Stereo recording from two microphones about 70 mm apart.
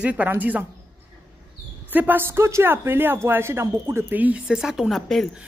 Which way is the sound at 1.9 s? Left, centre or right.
Right.